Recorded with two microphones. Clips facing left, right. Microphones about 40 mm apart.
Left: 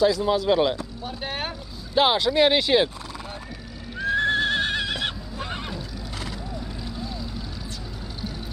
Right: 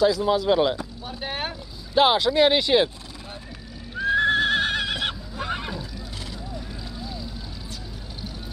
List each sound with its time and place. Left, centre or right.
0.0 s speech: centre
4.0 s neigh: centre